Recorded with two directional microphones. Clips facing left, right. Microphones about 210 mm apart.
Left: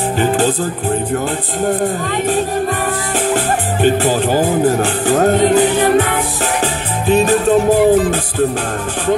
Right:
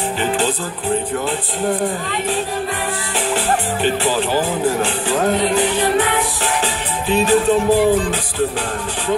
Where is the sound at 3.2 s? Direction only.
45° left (ahead or behind).